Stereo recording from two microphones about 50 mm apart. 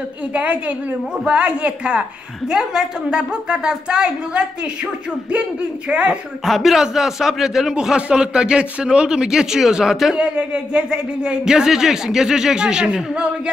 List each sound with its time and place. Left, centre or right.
0.3 s a woman's voice: right
5.9 s a woman's voice: right
6.4 s a man's voice: centre
7.7 s speech: centre